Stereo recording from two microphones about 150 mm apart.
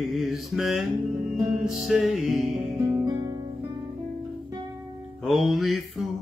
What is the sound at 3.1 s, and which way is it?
Music, 25° right (ahead or behind).